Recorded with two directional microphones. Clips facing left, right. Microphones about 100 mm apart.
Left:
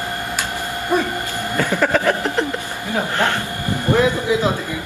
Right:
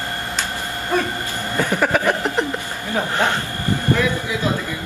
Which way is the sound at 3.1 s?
15° right (ahead or behind).